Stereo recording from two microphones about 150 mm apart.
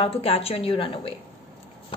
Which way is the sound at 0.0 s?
40° left (ahead or behind).